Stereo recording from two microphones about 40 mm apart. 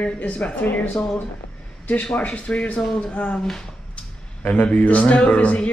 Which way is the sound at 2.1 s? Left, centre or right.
Left.